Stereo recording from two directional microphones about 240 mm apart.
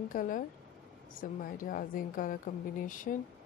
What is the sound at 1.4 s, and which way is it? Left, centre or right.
Speech, left.